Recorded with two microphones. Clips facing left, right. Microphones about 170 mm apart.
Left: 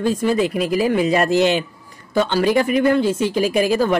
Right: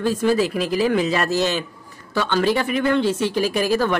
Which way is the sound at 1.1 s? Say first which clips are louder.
Left 4 dB; 50° left (ahead or behind).